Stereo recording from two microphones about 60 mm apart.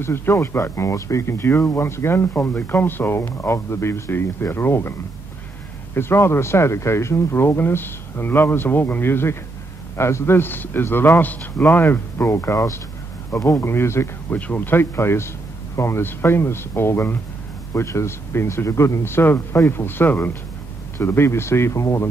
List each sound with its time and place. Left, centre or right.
0.0 s speech: left
3.2 s speech: left
5.9 s speech: left
13.4 s speech: left
13.7 s speech: left
14.3 s speech: left